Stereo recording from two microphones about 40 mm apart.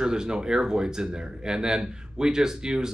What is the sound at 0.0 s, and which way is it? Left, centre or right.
Speech, centre.